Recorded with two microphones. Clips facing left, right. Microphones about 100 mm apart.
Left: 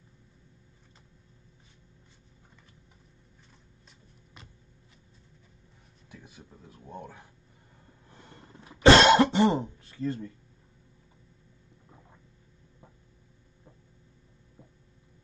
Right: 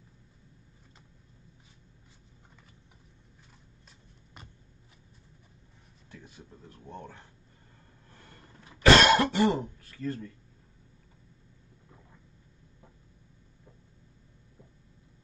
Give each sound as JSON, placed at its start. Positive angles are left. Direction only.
{"t": 6.1, "sound": "speech", "side_deg": 10}
{"t": 8.1, "sound": "cough", "side_deg": 20}